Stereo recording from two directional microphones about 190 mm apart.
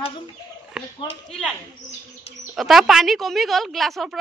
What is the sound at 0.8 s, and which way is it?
Speech, centre (ahead or behind).